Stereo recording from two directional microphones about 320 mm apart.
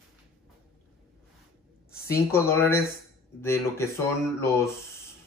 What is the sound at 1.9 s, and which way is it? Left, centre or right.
A woman's voice, centre.